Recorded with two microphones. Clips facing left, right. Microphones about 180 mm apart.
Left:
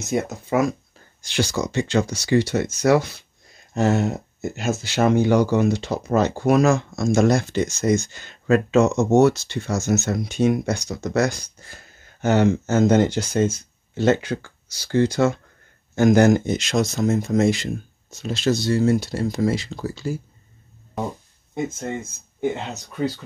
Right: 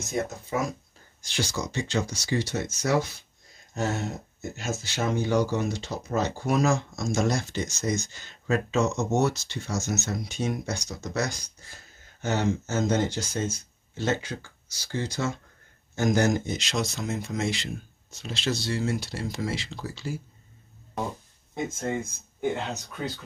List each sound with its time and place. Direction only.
0.1 s speech: 80° left; by 20.2 s 45° left (ahead or behind)